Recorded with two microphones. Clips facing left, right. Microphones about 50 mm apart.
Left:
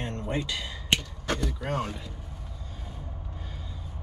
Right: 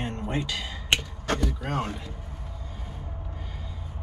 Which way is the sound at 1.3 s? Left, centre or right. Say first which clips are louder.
Right 3 dB; centre.